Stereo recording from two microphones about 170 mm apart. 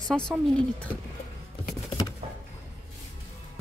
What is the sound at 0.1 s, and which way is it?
Speech, centre (ahead or behind).